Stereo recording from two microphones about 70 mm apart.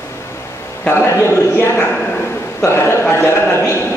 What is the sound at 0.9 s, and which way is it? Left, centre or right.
A man's voice, left.